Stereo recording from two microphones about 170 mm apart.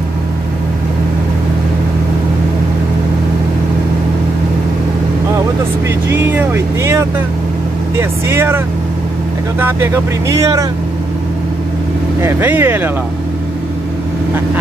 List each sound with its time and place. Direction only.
6.0 s speech: 15° right (ahead or behind)
12.2 s speech: 15° right (ahead or behind)